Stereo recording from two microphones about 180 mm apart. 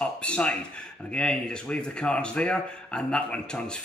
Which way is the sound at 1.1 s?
5° left (ahead or behind).